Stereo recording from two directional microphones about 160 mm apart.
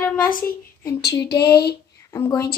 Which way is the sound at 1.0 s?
90° left.